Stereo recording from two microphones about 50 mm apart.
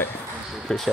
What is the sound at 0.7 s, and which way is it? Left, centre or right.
Speech, centre.